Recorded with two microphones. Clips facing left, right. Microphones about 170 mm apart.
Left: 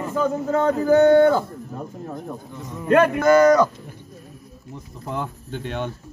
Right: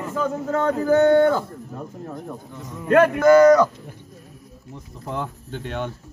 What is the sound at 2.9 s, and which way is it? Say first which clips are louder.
Speech: right 1 dB; 20° left (ahead or behind).